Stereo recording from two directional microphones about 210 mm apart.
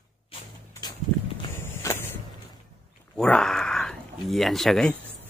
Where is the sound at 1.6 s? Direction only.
15° left (ahead or behind).